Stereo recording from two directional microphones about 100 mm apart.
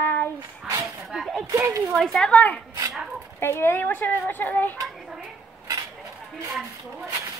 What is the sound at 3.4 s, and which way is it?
A child's voice, 25° left (ahead or behind).